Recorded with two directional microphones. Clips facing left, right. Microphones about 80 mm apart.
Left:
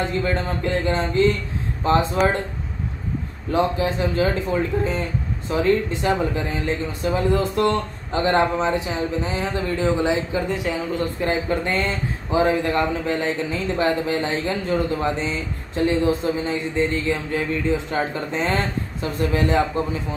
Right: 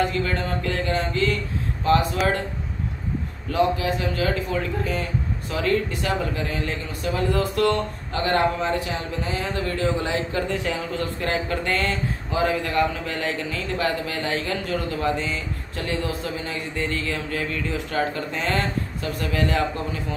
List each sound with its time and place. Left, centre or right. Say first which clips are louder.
0.0 s speech: left 1 dB; left
3.5 s speech: left 1 dB; left